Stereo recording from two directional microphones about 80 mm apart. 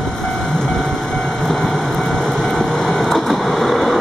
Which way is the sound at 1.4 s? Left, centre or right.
Centre.